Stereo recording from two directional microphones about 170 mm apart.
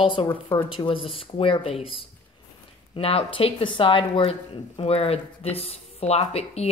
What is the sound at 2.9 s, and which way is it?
Speech, 35° left (ahead or behind).